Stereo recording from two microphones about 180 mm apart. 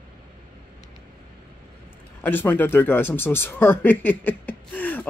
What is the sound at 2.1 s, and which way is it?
Speech, 10° left (ahead or behind).